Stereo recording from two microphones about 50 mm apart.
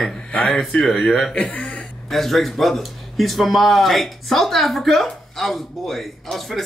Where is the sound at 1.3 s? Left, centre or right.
Left.